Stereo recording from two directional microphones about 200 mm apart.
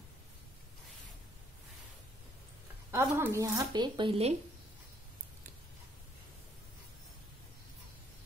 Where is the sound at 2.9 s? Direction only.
15° right (ahead or behind).